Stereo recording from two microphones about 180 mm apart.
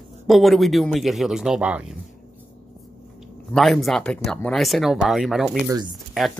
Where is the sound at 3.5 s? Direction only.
Centre (ahead or behind).